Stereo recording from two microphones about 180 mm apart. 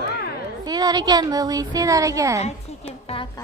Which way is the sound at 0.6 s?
20° right (ahead or behind).